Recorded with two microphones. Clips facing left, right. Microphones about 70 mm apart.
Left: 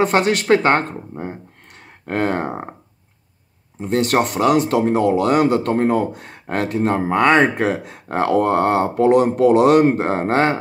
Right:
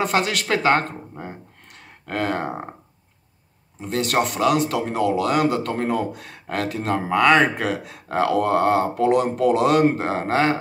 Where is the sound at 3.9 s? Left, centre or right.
Left.